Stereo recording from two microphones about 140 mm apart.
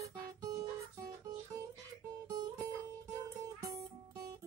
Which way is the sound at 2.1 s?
25° right (ahead or behind).